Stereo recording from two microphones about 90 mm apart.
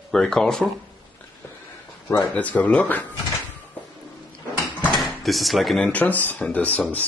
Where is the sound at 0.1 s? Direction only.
5° left (ahead or behind).